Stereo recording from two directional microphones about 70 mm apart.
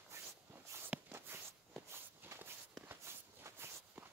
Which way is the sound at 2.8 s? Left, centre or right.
Right.